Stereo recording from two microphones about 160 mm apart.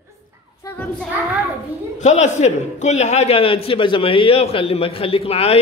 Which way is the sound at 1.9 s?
45° left (ahead or behind).